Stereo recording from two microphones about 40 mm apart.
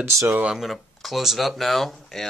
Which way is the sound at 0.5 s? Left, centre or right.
Centre.